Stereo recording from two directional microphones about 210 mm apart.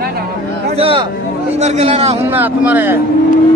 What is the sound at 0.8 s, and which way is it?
Speech, 25° right (ahead or behind).